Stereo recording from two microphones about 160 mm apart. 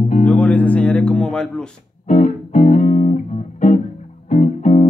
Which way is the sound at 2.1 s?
50° left (ahead or behind).